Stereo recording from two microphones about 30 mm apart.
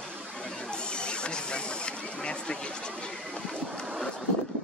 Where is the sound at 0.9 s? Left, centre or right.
Left.